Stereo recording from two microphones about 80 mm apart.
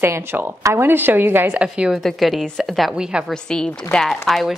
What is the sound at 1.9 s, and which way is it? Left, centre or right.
Speech, centre.